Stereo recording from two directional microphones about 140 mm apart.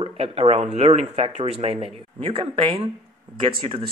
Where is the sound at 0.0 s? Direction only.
45° right (ahead or behind).